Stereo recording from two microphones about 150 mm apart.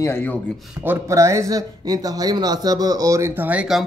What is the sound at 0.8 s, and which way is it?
Speech, 20° right (ahead or behind).